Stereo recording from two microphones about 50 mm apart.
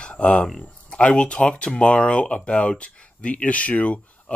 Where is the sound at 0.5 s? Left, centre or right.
Centre.